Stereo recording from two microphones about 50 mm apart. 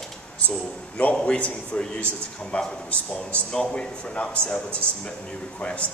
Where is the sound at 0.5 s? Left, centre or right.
Left.